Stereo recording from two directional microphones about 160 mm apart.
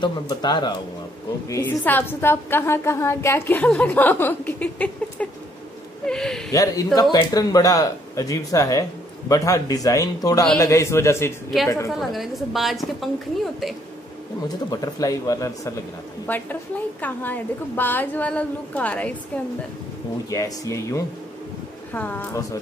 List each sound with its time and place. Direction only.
0.0 s speech: 25° left (ahead or behind)
1.5 s a woman's voice: 10° left (ahead or behind)
6.5 s a woman's voice: 20° left (ahead or behind)
11.9 s a woman's voice: centre (ahead or behind)
14.7 s a woman's voice: 20° left (ahead or behind)
20.2 s a woman's voice: 20° left (ahead or behind)